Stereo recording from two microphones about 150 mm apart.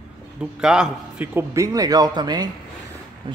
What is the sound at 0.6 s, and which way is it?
A man's voice, 5° right (ahead or behind).